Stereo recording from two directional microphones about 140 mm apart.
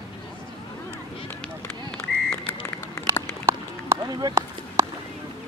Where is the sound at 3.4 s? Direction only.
20° right (ahead or behind).